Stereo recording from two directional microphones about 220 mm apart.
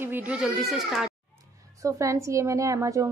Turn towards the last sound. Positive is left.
turn(degrees=-15)  # may be behind; listen again after turning